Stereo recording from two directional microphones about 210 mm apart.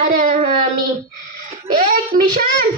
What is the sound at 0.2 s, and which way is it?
Child singing, 35° right (ahead or behind).